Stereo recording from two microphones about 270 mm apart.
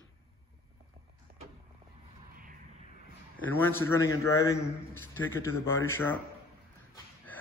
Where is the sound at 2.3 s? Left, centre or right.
Right.